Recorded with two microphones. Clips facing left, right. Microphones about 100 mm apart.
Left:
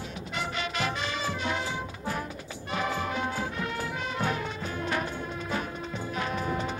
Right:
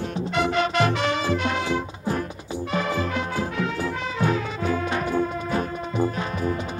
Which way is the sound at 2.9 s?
90° right.